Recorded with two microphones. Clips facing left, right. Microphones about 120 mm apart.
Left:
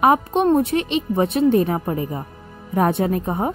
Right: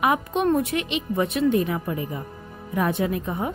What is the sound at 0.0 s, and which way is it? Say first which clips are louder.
A woman's voice: left 5 dB; 35° left (ahead or behind).